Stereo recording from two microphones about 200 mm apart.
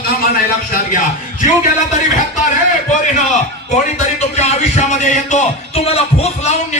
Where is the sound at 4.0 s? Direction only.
35° left (ahead or behind).